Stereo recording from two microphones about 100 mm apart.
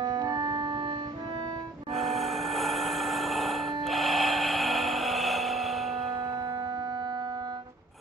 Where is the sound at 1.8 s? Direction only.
Centre (ahead or behind).